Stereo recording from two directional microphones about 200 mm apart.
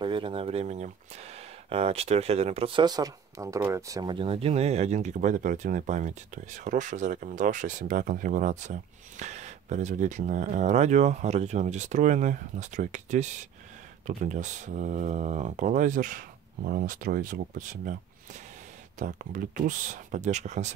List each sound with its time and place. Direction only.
0.0 s speech: 25° right (ahead or behind); by 17.9 s 45° right (ahead or behind)
18.9 s speech: 40° right (ahead or behind)